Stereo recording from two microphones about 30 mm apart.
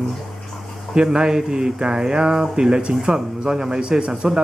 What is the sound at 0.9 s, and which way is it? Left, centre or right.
Speech, right.